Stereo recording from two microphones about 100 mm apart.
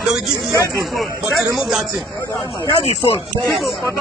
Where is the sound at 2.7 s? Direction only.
90° left.